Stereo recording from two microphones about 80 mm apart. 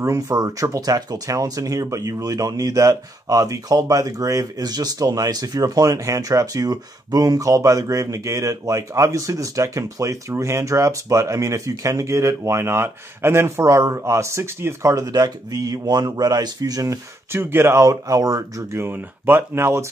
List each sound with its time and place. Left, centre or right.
0.0 s speech: right
15.5 s speech: right
17.4 s speech: right